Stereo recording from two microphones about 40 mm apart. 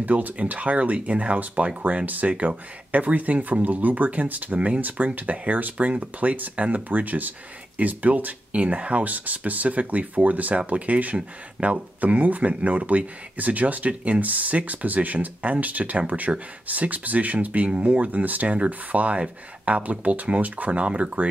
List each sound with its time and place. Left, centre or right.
0.0 s speech: right
20.8 s speech: right